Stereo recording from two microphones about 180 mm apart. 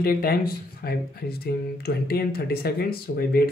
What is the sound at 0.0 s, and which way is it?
Speech, 60° left (ahead or behind).